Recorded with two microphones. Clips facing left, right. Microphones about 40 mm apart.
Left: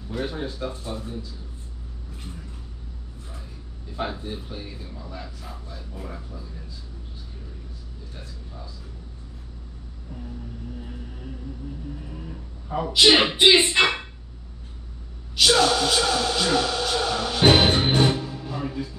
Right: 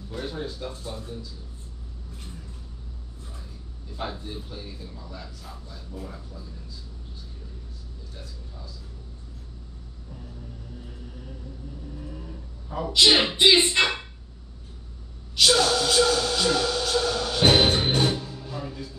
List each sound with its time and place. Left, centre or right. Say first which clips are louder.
0.1 s a man's voice: left 3 dB; left
3.9 s a man's voice: left 4 dB; centre
12.0 s a sound: left 1 dB; left
13.1 s a man's voice: left 3 dB; left
13.4 s music: left 2 dB; centre
15.4 s speech: left 2 dB; centre